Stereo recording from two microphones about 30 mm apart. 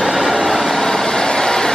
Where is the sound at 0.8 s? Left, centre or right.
Centre.